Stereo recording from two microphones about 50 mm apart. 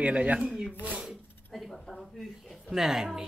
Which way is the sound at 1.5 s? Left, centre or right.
Centre.